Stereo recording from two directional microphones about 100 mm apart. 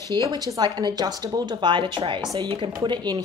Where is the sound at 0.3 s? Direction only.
40° right (ahead or behind).